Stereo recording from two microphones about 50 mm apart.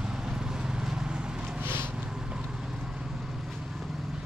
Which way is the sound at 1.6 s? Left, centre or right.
Right.